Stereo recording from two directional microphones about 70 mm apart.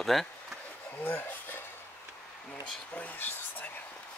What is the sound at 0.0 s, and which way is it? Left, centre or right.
Speech, centre.